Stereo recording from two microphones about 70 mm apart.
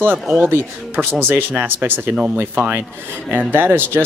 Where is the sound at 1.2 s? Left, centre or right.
Right.